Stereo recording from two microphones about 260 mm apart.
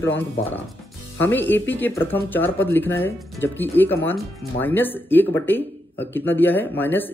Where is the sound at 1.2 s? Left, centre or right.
Centre.